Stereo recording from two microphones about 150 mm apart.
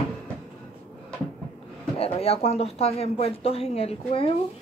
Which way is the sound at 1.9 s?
40° left (ahead or behind).